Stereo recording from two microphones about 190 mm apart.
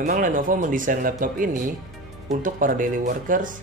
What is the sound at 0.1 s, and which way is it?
Speech, 45° right (ahead or behind).